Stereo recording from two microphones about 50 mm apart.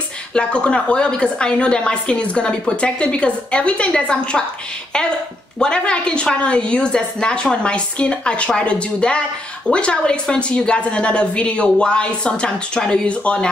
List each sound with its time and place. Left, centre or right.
0.3 s a woman's voice: left
5.6 s a woman's voice: centre